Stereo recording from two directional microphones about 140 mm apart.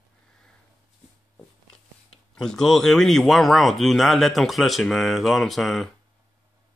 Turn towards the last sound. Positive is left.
turn(degrees=0)  # may be behind; listen again after turning